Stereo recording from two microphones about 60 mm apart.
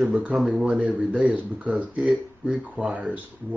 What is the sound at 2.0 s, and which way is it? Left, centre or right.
Speech, centre.